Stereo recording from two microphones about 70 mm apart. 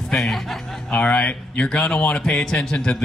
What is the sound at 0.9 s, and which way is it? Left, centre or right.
Speech, centre.